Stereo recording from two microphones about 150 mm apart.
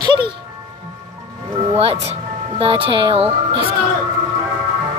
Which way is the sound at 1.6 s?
40° right (ahead or behind).